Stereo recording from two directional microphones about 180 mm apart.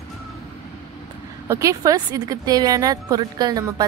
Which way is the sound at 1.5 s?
20° right (ahead or behind).